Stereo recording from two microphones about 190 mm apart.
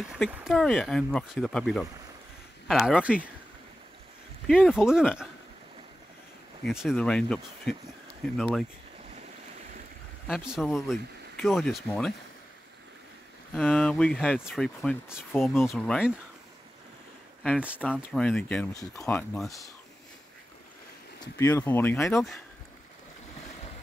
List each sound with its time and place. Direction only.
0.1 s speech: 5° right (ahead or behind)
4.6 s speech: 5° right (ahead or behind)
6.6 s speech: centre (ahead or behind)
10.3 s speech: 5° right (ahead or behind)
13.6 s speech: 5° left (ahead or behind)
15.5 s speech: 15° left (ahead or behind)
17.4 s speech: 5° left (ahead or behind)
21.2 s speech: 15° left (ahead or behind)